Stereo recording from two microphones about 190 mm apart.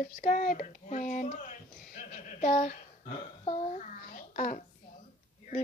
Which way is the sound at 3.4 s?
35° left (ahead or behind).